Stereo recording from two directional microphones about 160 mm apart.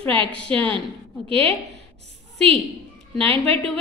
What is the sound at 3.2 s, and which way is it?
Speech, 35° right (ahead or behind).